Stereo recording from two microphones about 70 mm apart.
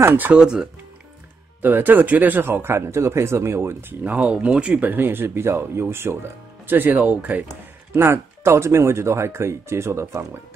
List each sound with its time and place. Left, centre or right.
0.0 s speech: right
0.4 s speech: centre
1.6 s speech: right
4.0 s speech: right
4.8 s speech: right
6.7 s speech: right
7.9 s speech: right